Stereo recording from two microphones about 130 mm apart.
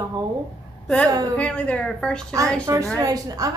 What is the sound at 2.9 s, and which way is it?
Speech, 30° right (ahead or behind).